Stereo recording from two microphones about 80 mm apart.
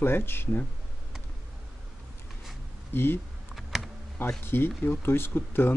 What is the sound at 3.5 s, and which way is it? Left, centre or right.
Computer keyboard, centre.